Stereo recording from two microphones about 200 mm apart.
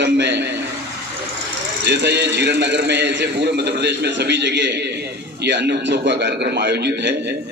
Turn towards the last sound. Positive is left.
turn(degrees=-60)  # may be behind; listen again after turning